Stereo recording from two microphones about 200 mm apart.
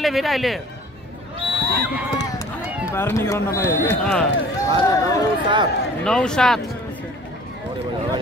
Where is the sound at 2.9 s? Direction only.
10° left (ahead or behind).